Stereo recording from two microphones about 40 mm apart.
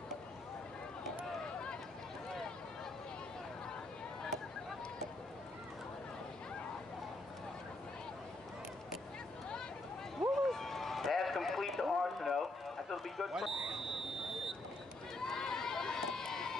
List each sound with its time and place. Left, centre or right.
1.4 s run: left
10.3 s run: centre
13.3 s speech: centre
15.1 s run: centre